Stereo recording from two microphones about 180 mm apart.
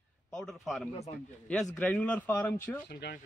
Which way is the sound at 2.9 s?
65° left (ahead or behind).